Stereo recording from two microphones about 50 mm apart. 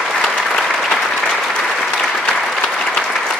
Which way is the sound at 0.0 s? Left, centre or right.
Centre.